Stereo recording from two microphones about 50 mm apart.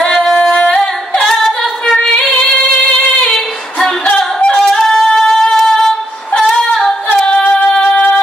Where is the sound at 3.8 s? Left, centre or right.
Left.